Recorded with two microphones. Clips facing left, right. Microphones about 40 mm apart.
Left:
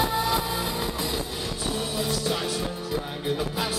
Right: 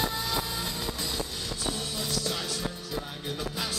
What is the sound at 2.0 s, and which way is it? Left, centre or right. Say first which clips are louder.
Music: left 6 dB; centre.